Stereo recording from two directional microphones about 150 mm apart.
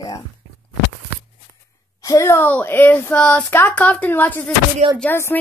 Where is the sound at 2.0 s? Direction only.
20° left (ahead or behind).